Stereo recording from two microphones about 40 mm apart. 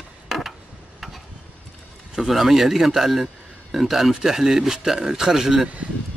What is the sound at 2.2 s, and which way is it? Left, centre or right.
Speech, centre.